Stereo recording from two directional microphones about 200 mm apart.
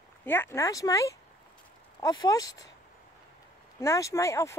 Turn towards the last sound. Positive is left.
turn(degrees=15)  # may be behind; listen again after turning